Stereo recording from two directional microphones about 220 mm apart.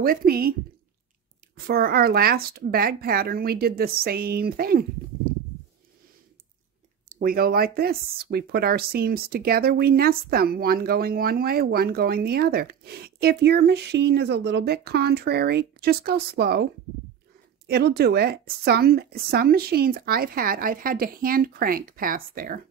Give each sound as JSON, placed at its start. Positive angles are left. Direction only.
{"t": 0.0, "sound": "speech", "side_deg": -40}
{"t": 1.7, "sound": "speech", "side_deg": -45}
{"t": 7.1, "sound": "speech", "side_deg": -40}
{"t": 17.6, "sound": "speech", "side_deg": -45}